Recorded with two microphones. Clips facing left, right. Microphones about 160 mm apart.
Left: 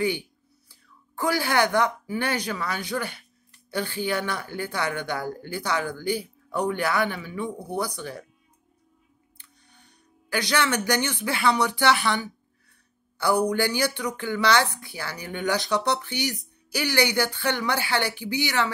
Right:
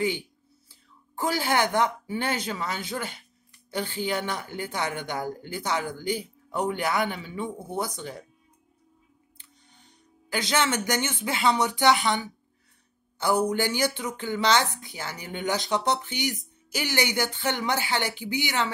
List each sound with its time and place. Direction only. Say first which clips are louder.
0.7 s speech: left 3 dB; 20° right (ahead or behind)
9.4 s music: left 1 dB; 20° right (ahead or behind)
10.9 s speech: left 2 dB; 20° right (ahead or behind)
13.5 s speech: left 1 dB; 20° right (ahead or behind)